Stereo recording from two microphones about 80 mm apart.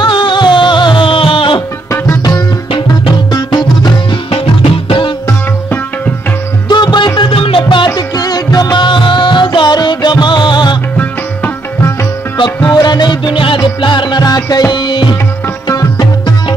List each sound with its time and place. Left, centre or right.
0.0 s music: left
3.3 s music: left
6.7 s music: left
7.2 s music: left
7.9 s music: left
12.6 s music: left